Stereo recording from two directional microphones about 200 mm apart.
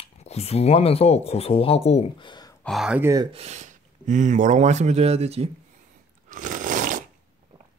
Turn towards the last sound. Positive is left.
turn(degrees=-40)  # may be behind; listen again after turning